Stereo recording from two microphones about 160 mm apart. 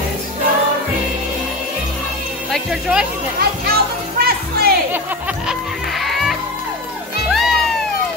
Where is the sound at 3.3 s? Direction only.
70° right (ahead or behind).